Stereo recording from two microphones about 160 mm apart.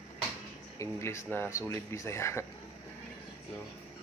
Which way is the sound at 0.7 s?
20° left (ahead or behind).